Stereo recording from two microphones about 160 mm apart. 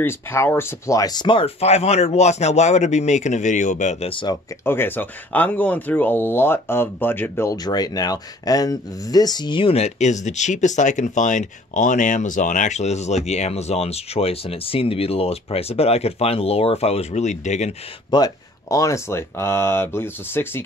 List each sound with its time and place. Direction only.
0.0 s speech: 15° left (ahead or behind); by 4.1 s 50° left (ahead or behind)
4.1 s speech: 30° left (ahead or behind)
4.6 s speech: 15° left (ahead or behind); by 17.7 s 45° left (ahead or behind)
18.1 s speech: 25° left (ahead or behind)